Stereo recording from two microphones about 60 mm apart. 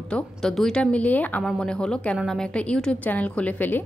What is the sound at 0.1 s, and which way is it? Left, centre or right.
Speech, centre.